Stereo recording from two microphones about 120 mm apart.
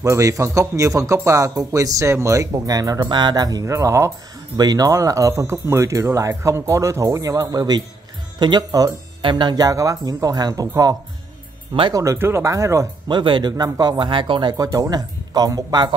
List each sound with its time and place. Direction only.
0.0 s speech: 25° right (ahead or behind)
13.1 s speech: 40° right (ahead or behind)
14.6 s speech: 30° right (ahead or behind)